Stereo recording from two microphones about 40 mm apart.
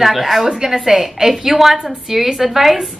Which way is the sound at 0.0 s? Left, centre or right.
Centre.